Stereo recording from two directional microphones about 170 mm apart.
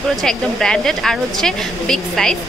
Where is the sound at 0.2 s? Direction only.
5° left (ahead or behind).